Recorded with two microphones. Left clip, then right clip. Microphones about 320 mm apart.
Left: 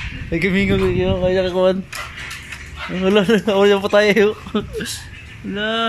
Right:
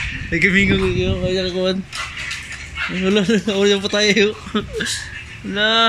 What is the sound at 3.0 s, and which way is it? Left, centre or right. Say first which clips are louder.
Speech: left 4 dB; left.